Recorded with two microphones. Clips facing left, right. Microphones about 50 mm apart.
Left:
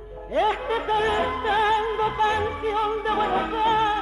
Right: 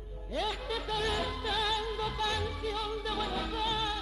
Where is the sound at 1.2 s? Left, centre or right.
Left.